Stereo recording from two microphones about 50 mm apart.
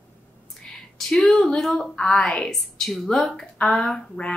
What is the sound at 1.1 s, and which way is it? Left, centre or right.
A woman's voice, centre.